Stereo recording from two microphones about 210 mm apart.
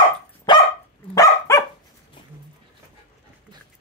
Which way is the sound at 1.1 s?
15° left (ahead or behind).